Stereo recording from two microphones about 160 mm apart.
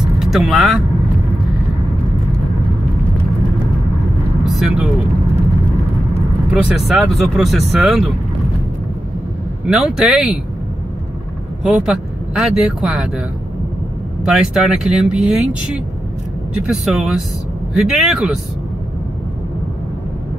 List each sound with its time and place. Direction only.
0.0 s vehicle: 5° right (ahead or behind)
4.5 s vehicle: 5° right (ahead or behind)
6.5 s speech: centre (ahead or behind)
9.7 s speech: centre (ahead or behind)
11.6 s speech: 5° right (ahead or behind)
14.2 s speech: 5° right (ahead or behind)
16.6 s speech: 5° right (ahead or behind)